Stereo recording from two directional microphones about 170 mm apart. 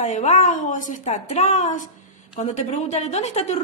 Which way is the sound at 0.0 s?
45° left (ahead or behind).